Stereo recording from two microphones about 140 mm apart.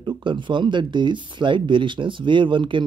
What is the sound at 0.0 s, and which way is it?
Speech, 35° right (ahead or behind).